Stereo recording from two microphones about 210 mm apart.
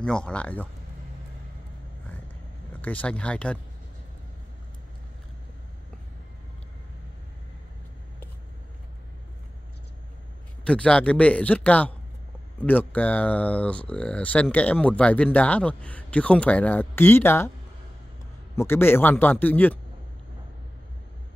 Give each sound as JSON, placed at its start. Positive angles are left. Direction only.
{"t": 0.0, "sound": "speech", "side_deg": 5}
{"t": 2.8, "sound": "speech", "side_deg": 5}
{"t": 10.6, "sound": "speech", "side_deg": 5}
{"t": 18.6, "sound": "speech", "side_deg": 10}